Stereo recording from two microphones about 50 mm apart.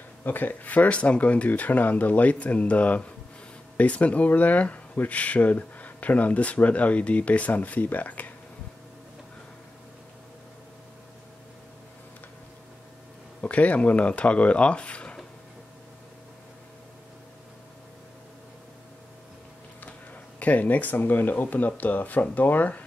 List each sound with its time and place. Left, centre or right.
0.2 s speech: left
13.4 s speech: left
20.3 s speech: left